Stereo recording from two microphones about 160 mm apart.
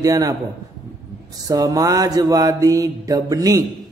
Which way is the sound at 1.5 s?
25° right (ahead or behind).